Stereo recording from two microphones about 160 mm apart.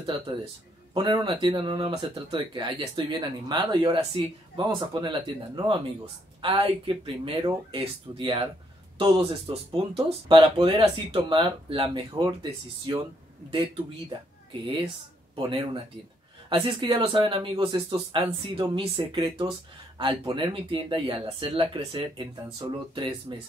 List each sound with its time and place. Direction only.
0.9 s speech: 30° right (ahead or behind)
15.3 s speech: 30° right (ahead or behind)